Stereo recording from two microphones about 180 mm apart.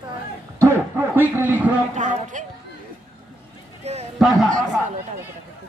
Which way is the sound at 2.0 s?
45° right (ahead or behind).